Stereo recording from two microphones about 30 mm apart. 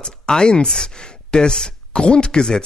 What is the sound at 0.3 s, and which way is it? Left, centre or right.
Speech, left.